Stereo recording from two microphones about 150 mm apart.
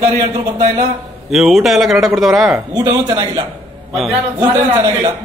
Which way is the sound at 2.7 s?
30° right (ahead or behind).